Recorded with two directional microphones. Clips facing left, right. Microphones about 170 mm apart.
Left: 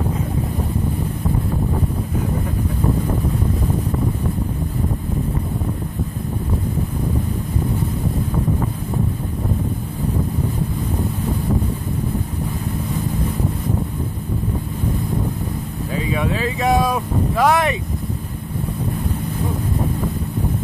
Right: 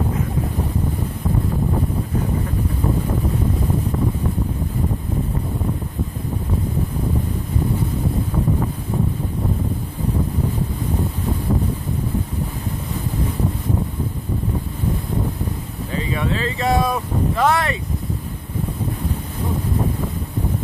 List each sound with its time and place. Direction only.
16.1 s speech: 10° left (ahead or behind)
16.8 s speech: centre (ahead or behind)
17.5 s speech: 15° left (ahead or behind)